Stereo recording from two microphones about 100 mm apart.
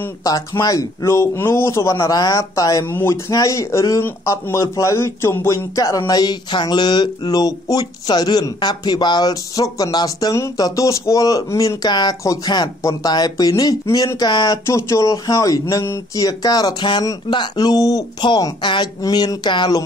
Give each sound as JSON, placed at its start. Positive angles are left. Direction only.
{"t": 0.2, "sound": "speech", "side_deg": 40}
{"t": 2.9, "sound": "speech", "side_deg": 25}
{"t": 3.3, "sound": "speech", "side_deg": 35}